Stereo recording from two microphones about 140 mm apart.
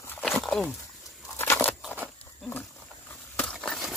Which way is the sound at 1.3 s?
15° left (ahead or behind).